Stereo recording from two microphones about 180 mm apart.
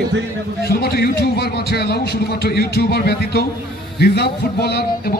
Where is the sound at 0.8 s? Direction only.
60° left (ahead or behind).